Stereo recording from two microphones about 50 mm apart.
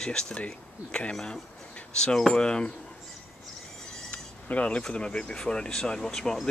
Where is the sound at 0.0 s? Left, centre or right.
Centre.